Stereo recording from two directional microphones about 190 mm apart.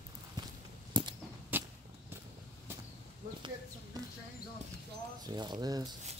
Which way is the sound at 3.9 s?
20° right (ahead or behind).